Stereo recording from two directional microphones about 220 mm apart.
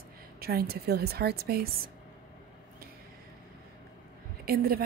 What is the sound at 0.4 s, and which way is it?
A woman's voice, 45° right (ahead or behind).